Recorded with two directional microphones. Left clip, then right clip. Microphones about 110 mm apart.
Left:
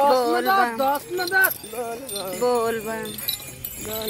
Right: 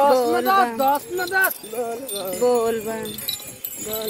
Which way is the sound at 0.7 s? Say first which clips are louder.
Right 2 dB; 90° left.